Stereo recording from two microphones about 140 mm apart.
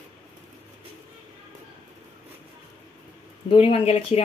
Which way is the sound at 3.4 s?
40° left (ahead or behind).